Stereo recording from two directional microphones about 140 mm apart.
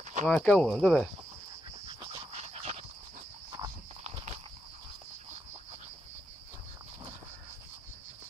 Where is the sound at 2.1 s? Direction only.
45° right (ahead or behind).